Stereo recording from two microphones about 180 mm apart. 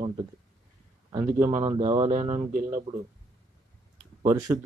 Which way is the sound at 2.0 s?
35° right (ahead or behind).